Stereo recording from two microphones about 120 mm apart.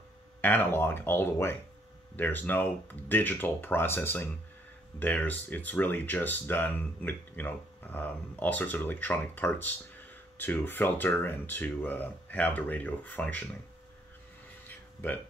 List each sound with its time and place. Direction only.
0.4 s speech: 15° left (ahead or behind)